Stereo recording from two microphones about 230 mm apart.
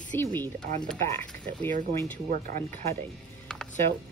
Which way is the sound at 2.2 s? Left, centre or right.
Right.